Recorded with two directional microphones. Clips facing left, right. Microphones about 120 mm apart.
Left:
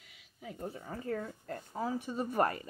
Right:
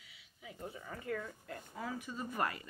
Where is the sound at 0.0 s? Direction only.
50° left (ahead or behind); by 2.1 s 30° left (ahead or behind).